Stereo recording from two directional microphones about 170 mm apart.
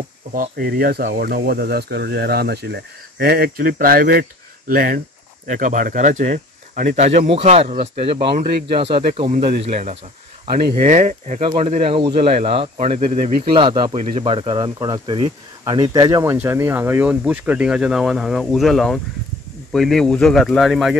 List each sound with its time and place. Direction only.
0.3 s speech: 55° right (ahead or behind)
7.0 s speech: 40° right (ahead or behind)
9.4 s speech: 75° right (ahead or behind)
9.7 s speech: 45° right (ahead or behind)
13.5 s speech: 30° right (ahead or behind); by 21.0 s centre (ahead or behind)